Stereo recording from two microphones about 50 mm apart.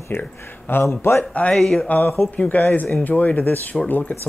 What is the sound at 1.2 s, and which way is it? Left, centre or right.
Speech, left.